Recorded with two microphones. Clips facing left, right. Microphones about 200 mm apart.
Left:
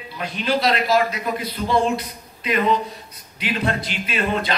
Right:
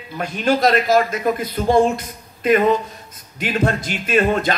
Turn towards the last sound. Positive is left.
turn(degrees=-45)  # may be behind; listen again after turning